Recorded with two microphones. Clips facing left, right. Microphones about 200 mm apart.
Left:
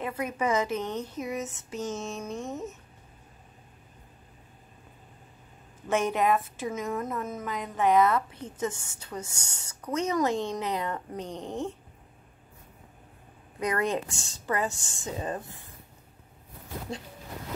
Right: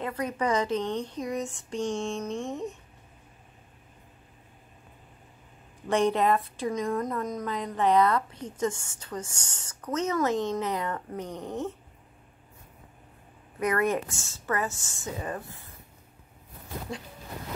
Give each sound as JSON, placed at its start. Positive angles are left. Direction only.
{"t": 0.0, "sound": "a woman's voice", "side_deg": 10}
{"t": 5.9, "sound": "a woman's voice", "side_deg": 0}
{"t": 11.2, "sound": "speech", "side_deg": -10}
{"t": 13.6, "sound": "speech", "side_deg": 15}